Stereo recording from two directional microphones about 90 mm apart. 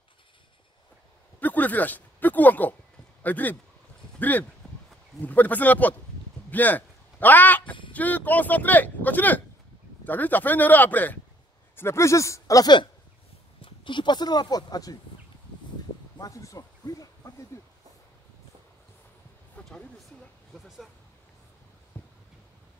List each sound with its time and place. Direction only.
1.4 s speech: 20° left (ahead or behind); by 12.6 s 35° left (ahead or behind)
13.6 s speech: 65° left (ahead or behind); by 15.0 s 45° left (ahead or behind)
16.2 s speech: 40° left (ahead or behind)
19.6 s a sound: 15° left (ahead or behind)
20.6 s speech: centre (ahead or behind)